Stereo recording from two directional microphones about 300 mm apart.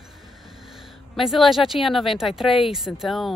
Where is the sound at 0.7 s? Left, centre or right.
Centre.